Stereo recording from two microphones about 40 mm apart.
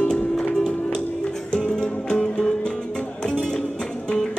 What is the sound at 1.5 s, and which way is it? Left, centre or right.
Music, centre.